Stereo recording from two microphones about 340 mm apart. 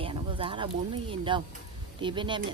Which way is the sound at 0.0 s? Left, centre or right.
Centre.